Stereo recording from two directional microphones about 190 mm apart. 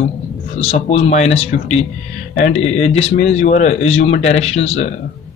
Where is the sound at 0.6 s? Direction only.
35° left (ahead or behind).